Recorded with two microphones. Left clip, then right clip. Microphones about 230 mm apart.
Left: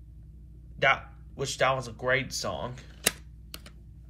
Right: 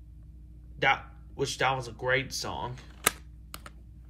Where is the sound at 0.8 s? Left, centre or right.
Centre.